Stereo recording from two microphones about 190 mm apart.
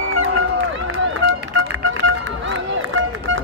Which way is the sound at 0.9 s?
90° right.